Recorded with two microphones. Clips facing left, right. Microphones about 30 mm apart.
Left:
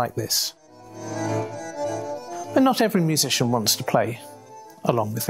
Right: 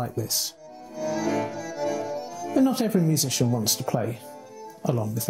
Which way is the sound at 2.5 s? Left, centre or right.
Left.